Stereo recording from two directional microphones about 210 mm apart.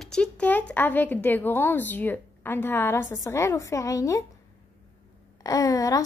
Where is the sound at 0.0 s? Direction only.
5° left (ahead or behind).